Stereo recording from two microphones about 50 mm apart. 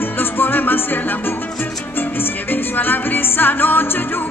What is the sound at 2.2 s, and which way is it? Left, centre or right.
Music, left.